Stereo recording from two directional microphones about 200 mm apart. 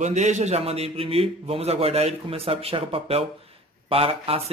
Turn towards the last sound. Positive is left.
turn(degrees=-30)  # may be behind; listen again after turning